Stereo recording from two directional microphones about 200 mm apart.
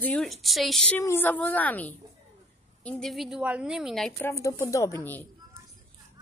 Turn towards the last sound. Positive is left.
turn(degrees=10)  # may be behind; listen again after turning